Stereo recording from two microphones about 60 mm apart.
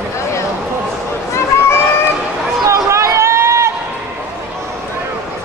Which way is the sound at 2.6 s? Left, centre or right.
Right.